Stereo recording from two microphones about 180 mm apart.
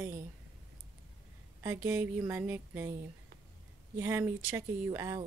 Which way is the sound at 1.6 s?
15° right (ahead or behind).